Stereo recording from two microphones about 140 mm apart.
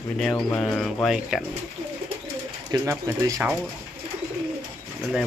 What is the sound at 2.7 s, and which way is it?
Speech, 20° right (ahead or behind).